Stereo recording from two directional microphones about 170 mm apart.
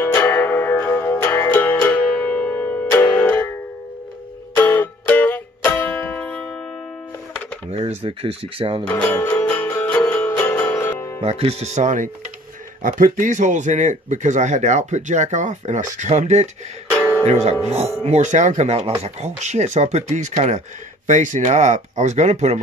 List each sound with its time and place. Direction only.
0.0 s music: 15° left (ahead or behind)
4.6 s music: 10° left (ahead or behind)
7.7 s speech: 35° right (ahead or behind)
8.8 s music: 10° left (ahead or behind)
11.1 s speech: 35° right (ahead or behind)